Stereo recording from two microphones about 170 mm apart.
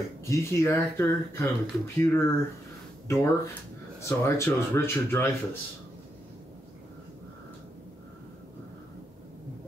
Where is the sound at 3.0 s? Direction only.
15° left (ahead or behind).